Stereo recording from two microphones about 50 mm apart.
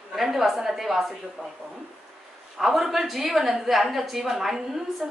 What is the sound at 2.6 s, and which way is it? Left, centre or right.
A woman's voice, centre.